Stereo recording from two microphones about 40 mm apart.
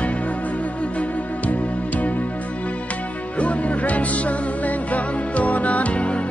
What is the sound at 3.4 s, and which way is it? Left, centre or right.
Music, left.